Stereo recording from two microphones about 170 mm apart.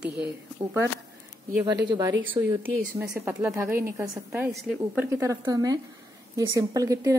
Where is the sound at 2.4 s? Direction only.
25° right (ahead or behind).